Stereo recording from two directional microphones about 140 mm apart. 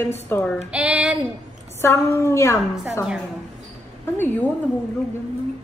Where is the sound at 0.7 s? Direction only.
5° right (ahead or behind).